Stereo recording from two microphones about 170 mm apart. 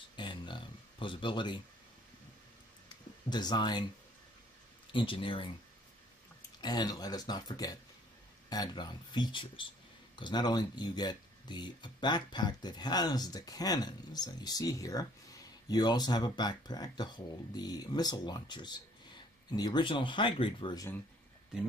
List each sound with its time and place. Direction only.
0.1 s a sound: 25° left (ahead or behind)
3.3 s speech: 25° left (ahead or behind)
4.9 s speech: 30° left (ahead or behind)
6.6 s speech: 25° left (ahead or behind)